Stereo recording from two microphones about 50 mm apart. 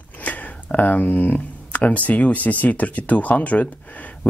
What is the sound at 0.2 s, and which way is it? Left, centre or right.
Speech, left.